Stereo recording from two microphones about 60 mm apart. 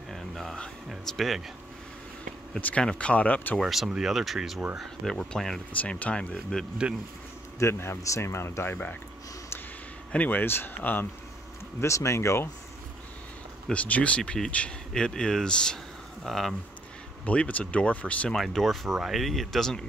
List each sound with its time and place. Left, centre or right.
0.1 s music: centre
1.0 s speech: centre
2.8 s speech: centre
3.5 s speech: centre
5.8 s speech: left
6.8 s speech: right
7.5 s speech: left
10.1 s speech: left
11.8 s speech: left
13.7 s speech: left; by 16.5 s centre
17.2 s speech: left
18.3 s speech: centre